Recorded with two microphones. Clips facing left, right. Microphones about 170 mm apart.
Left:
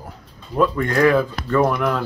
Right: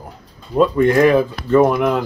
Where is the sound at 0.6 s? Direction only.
20° right (ahead or behind).